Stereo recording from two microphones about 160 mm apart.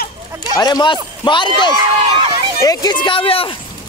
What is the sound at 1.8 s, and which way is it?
Run, 25° right (ahead or behind).